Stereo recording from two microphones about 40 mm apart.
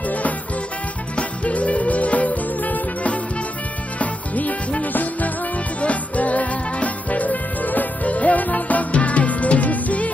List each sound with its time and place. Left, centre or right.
1.1 s music: left